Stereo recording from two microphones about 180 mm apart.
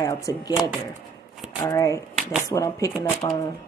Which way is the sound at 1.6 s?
20° left (ahead or behind).